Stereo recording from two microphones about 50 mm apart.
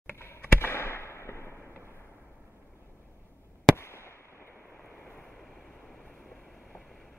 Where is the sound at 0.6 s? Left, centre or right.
Left.